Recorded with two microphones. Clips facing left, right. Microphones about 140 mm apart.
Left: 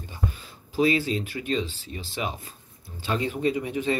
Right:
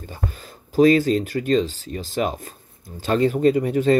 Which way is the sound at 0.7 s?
45° right (ahead or behind).